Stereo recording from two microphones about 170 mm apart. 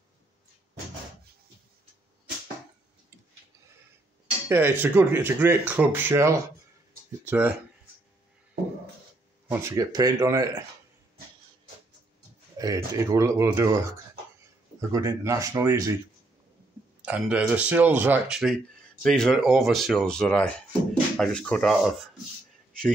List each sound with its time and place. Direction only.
4.5 s speech: 15° right (ahead or behind)
9.5 s speech: 15° right (ahead or behind)
12.5 s speech: 20° right (ahead or behind)
17.0 s speech: 5° right (ahead or behind)